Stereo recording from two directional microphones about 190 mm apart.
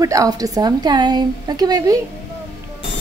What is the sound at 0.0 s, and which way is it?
A woman's voice, 20° right (ahead or behind).